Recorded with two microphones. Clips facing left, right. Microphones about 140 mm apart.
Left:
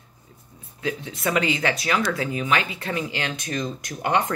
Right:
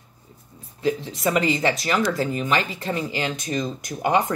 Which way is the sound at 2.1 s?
40° right (ahead or behind).